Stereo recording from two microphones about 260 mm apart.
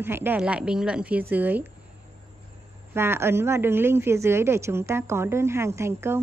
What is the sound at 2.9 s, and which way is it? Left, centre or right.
A woman's voice, centre.